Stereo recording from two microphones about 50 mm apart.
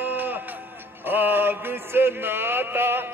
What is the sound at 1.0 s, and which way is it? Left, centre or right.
Mantra, right.